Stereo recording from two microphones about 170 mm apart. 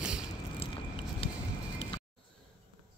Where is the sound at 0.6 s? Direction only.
35° left (ahead or behind).